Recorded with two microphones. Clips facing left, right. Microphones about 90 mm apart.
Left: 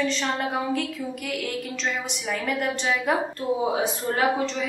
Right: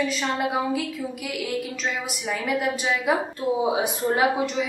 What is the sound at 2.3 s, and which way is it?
A woman's voice, 5° right (ahead or behind).